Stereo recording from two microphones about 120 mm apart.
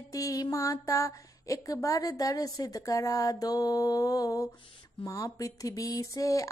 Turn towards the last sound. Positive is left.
turn(degrees=25)  # may be behind; listen again after turning